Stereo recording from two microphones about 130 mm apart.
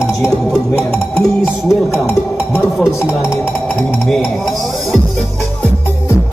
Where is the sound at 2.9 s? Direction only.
20° left (ahead or behind).